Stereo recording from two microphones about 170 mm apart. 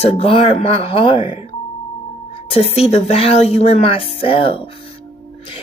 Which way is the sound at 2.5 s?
35° left (ahead or behind).